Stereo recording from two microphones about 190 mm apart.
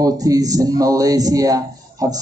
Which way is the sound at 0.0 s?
20° right (ahead or behind).